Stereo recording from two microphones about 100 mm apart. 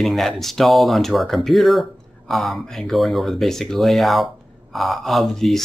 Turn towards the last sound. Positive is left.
turn(degrees=0)  # may be behind; listen again after turning